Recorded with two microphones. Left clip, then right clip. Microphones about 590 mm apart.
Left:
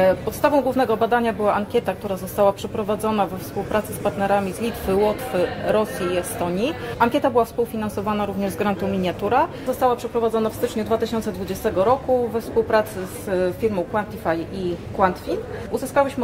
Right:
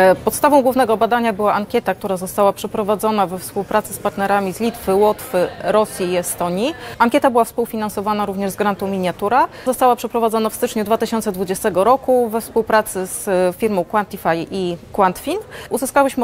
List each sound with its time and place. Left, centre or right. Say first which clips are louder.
0.0 s a woman's voice: right 5 dB; right
9.8 s speech: right 5 dB; right